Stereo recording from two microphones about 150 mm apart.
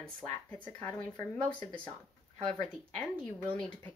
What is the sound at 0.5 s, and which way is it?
Speech, 10° left (ahead or behind).